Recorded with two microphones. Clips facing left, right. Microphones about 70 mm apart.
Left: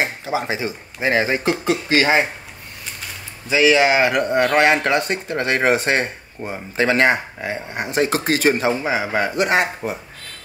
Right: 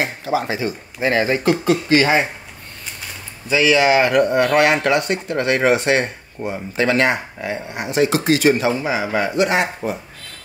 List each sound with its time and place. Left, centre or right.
0.0 s speech: left
3.4 s speech: centre
4.8 s speech: left
9.4 s speech: left